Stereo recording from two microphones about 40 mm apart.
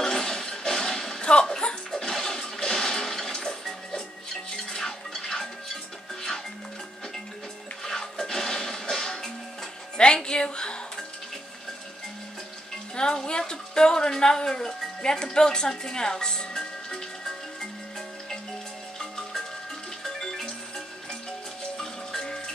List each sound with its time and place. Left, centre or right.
0.0 s music: centre
7.8 s music: centre
12.9 s a sound: centre
18.9 s marimba: centre
20.0 s music: centre